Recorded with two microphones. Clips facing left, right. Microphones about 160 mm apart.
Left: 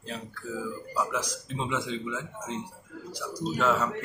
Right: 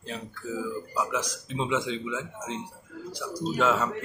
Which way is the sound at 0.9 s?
5° right (ahead or behind).